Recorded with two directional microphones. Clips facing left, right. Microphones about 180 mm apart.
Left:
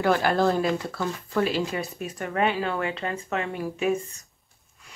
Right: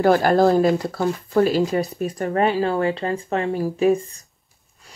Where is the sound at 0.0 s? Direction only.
40° right (ahead or behind).